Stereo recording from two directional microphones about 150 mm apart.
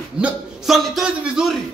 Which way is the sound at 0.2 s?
Centre (ahead or behind).